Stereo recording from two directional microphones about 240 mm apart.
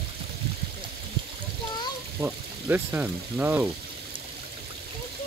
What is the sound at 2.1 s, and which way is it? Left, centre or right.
Speech, centre.